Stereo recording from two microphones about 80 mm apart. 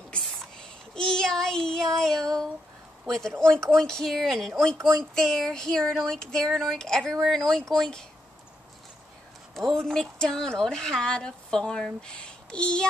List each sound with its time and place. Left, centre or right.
0.2 s child singing: centre
3.1 s speech: centre
9.6 s speech: centre